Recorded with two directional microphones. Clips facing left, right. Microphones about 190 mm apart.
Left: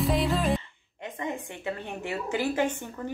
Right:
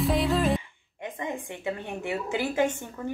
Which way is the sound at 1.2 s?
15° right (ahead or behind).